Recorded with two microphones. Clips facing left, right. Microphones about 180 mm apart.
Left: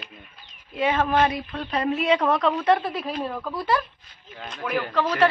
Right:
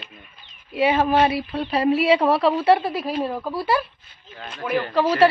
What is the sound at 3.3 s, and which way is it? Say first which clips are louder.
Speech: right 3 dB; 25° right (ahead or behind).